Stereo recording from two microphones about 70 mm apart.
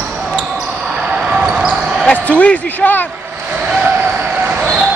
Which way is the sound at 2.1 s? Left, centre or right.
Centre.